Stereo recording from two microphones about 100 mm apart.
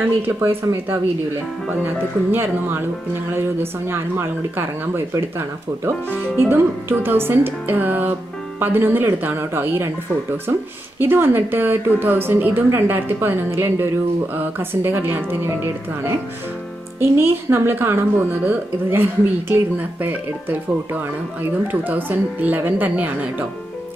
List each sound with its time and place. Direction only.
2.3 s a woman's voice: 25° right (ahead or behind)